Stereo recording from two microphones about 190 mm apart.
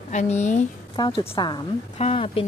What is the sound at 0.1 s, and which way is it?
Speech, 35° left (ahead or behind).